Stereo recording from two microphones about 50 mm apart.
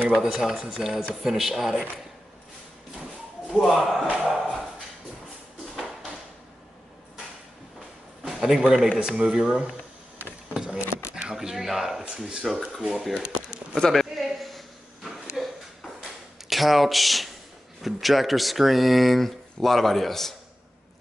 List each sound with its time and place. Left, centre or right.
0.1 s speech: centre
3.7 s speech: centre
4.3 s a sound: centre
8.2 s speech: centre
10.5 s a sound: centre
11.3 s speech: centre
13.7 s speech: centre
14.1 s a sound: centre
16.4 s speech: centre